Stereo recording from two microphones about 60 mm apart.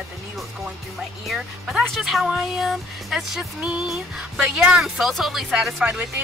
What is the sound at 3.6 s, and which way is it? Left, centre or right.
Music, centre.